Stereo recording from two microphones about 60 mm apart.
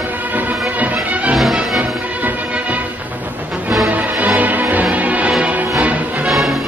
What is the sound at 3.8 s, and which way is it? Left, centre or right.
Music, right.